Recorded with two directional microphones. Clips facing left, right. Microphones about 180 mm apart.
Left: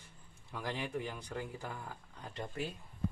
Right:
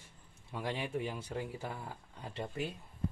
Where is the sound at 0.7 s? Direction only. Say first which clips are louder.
Right 2 dB; 20° right (ahead or behind).